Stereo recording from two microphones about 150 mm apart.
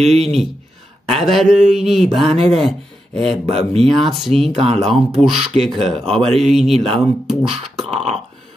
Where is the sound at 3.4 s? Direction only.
40° right (ahead or behind).